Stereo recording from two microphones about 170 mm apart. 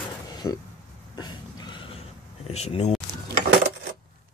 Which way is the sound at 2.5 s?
40° left (ahead or behind).